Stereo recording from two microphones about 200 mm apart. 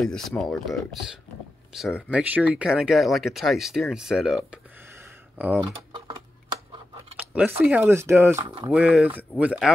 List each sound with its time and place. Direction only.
0.0 s speech: 5° left (ahead or behind)
5.6 s typing: 25° right (ahead or behind)
7.2 s speech: 10° right (ahead or behind)